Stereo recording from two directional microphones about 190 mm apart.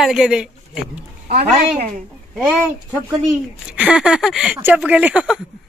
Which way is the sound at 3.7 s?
5° right (ahead or behind).